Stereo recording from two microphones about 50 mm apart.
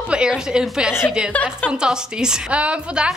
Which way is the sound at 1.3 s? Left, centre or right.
Left.